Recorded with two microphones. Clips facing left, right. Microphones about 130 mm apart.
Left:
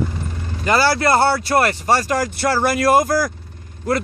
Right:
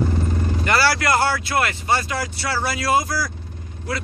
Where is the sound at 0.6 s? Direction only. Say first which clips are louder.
Left 4 dB; 25° left (ahead or behind).